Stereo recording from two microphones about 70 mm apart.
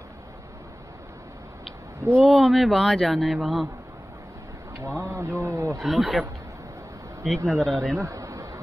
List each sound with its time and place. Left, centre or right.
2.2 s speech: centre
4.7 s speech: right
5.8 s speech: centre
7.4 s speech: centre
8.0 s a sound: right